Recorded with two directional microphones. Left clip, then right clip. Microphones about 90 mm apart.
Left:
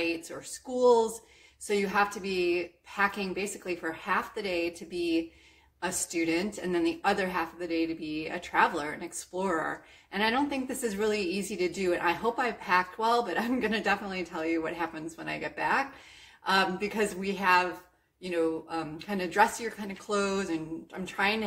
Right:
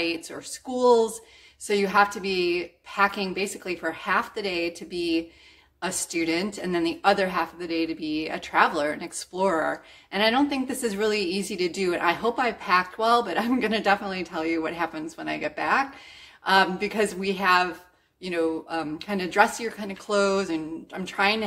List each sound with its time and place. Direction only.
0.0 s a woman's voice: 30° right (ahead or behind)